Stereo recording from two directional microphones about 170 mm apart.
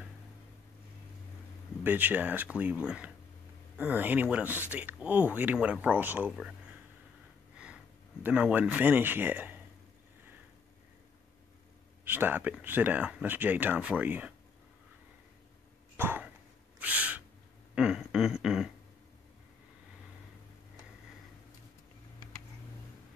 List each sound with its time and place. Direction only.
1.8 s speech: 10° right (ahead or behind)
7.5 s speech: 5° right (ahead or behind)
12.0 s speech: 10° right (ahead or behind)
16.0 s cough: 10° right (ahead or behind)
16.8 s owl: 10° right (ahead or behind)
17.7 s a sound: 5° right (ahead or behind)